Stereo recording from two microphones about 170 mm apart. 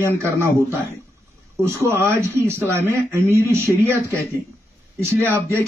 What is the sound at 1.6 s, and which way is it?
Speech, 15° right (ahead or behind).